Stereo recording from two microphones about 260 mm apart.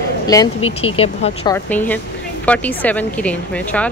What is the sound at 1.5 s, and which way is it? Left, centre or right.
A woman's voice, centre.